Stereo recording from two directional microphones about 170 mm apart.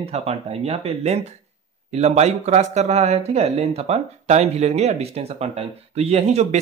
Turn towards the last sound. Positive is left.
turn(degrees=-40)  # may be behind; listen again after turning